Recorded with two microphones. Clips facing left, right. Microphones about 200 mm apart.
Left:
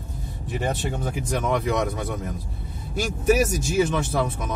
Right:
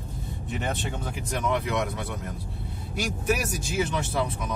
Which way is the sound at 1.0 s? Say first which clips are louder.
Left 4 dB; 45° left (ahead or behind).